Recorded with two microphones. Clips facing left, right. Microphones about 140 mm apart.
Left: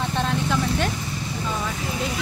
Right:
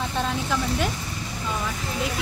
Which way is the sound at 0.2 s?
5° right (ahead or behind).